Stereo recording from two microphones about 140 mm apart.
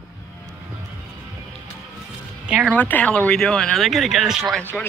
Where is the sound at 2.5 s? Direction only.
10° right (ahead or behind).